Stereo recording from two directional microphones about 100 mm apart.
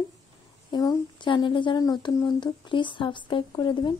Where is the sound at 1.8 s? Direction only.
45° left (ahead or behind).